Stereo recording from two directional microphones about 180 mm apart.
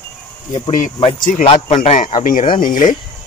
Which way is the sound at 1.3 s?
45° left (ahead or behind).